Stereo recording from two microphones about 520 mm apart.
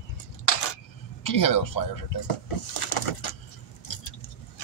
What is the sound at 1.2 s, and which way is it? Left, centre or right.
Speech, left.